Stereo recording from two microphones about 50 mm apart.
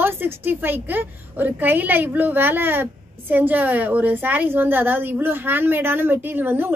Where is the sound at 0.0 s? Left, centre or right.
Right.